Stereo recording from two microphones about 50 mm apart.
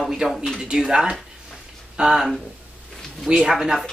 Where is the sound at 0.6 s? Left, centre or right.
Centre.